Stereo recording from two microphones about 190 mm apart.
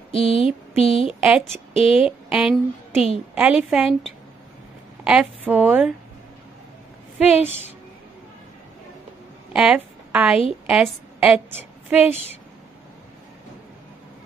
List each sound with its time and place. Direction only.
0.1 s a sound: 30° left (ahead or behind)
0.7 s a woman's voice: 30° left (ahead or behind)
1.2 s a woman's voice: 5° right (ahead or behind)
1.7 s a woman's voice: 30° left (ahead or behind)
2.0 s a woman's voice: 5° right (ahead or behind)
5.0 s a woman's voice: 5° right (ahead or behind)
7.2 s a woman's voice: 10° right (ahead or behind)
9.5 s a woman's voice: 5° right (ahead or behind)